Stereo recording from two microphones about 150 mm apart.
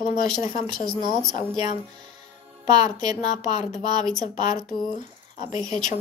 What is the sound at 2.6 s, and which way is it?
A woman's voice, 25° right (ahead or behind).